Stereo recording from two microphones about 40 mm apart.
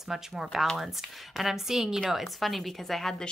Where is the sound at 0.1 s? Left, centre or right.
Centre.